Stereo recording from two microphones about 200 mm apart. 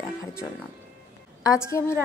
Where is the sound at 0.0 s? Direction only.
15° left (ahead or behind).